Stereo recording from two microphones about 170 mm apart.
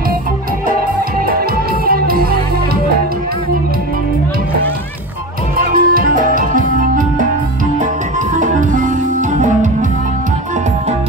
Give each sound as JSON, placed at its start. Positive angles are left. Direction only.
{"t": 1.2, "sound": "music", "side_deg": -60}
{"t": 5.8, "sound": "music", "side_deg": -60}